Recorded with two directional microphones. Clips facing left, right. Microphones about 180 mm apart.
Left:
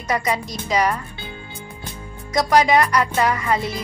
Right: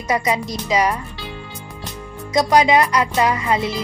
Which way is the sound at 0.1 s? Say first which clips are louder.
Right 2 dB; 20° right (ahead or behind).